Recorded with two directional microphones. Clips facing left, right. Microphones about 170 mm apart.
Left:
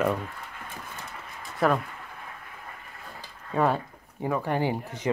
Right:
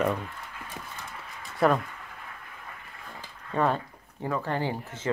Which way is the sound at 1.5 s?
Centre (ahead or behind).